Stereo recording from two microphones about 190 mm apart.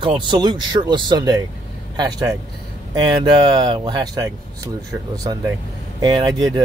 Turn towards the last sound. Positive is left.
turn(degrees=-20)  # may be behind; listen again after turning